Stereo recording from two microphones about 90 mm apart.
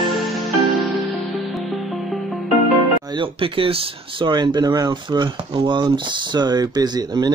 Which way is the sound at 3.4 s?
90° right.